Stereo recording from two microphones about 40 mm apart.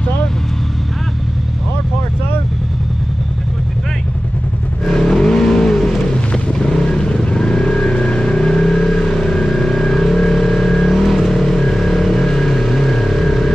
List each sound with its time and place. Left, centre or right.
4.8 s vehicle: centre